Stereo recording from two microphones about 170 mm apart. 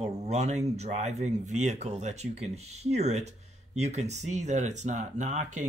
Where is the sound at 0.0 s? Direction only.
40° right (ahead or behind).